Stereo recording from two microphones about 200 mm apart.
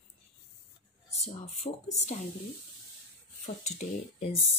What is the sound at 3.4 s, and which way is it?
Speech, 35° left (ahead or behind).